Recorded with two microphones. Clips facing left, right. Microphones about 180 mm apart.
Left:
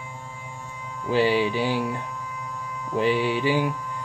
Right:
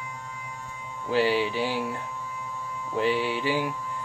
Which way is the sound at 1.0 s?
20° left (ahead or behind).